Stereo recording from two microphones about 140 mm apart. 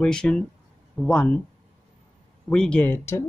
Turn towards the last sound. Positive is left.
turn(degrees=15)  # may be behind; listen again after turning